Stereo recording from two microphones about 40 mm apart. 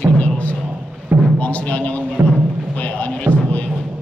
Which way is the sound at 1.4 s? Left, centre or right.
Left.